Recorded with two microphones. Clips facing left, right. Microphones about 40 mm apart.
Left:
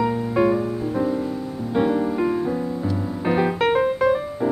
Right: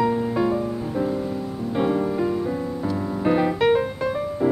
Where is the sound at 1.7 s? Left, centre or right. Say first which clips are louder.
Left 2 dB; centre.